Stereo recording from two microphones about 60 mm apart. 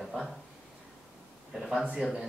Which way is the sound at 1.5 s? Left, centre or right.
Centre.